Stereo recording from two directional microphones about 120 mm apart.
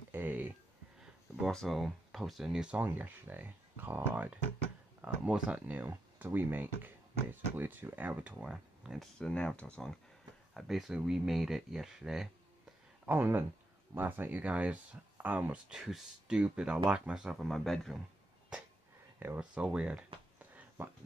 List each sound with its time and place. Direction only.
0.1 s a sound: 15° right (ahead or behind)
1.5 s speech: centre (ahead or behind)
9.2 s speech: 10° left (ahead or behind)
13.0 s speech: 15° right (ahead or behind); by 18.0 s centre (ahead or behind)
19.1 s speech: 15° right (ahead or behind)
20.3 s a sound: 15° right (ahead or behind)